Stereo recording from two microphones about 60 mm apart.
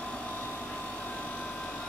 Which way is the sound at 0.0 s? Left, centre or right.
Left.